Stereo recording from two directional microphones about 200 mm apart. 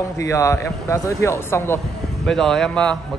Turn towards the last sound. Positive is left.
turn(degrees=5)  # may be behind; listen again after turning